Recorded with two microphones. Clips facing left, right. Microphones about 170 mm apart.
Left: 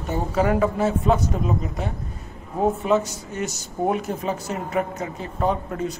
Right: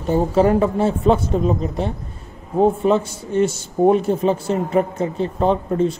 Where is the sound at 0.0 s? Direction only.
30° right (ahead or behind).